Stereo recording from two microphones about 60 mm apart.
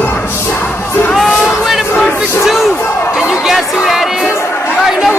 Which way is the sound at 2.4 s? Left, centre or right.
Centre.